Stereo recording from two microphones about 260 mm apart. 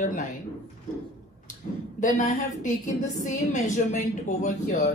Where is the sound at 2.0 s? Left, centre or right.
Left.